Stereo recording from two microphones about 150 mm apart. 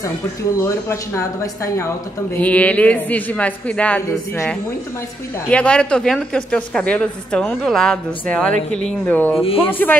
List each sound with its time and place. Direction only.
0.6 s speech: 20° left (ahead or behind)
2.3 s a woman's voice: 10° left (ahead or behind)